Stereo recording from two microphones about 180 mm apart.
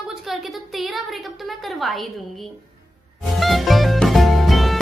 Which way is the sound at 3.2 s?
Centre (ahead or behind).